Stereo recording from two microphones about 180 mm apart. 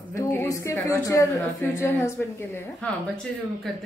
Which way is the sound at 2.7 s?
5° left (ahead or behind).